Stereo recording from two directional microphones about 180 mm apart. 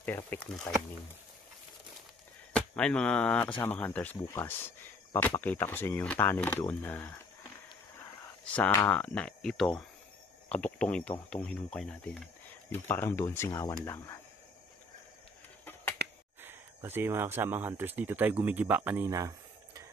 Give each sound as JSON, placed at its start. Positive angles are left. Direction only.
{"t": 0.0, "sound": "speech", "side_deg": 10}
{"t": 2.5, "sound": "speech", "side_deg": 5}
{"t": 8.5, "sound": "speech", "side_deg": 5}
{"t": 16.0, "sound": "finger snapping", "side_deg": -65}
{"t": 16.3, "sound": "speech", "side_deg": -10}